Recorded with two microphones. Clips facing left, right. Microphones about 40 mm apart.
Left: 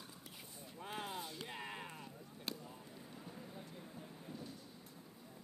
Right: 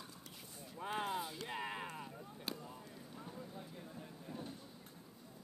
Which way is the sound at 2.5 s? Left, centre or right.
Centre.